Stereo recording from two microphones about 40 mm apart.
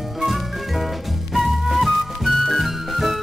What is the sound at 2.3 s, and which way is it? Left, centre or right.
Music, centre.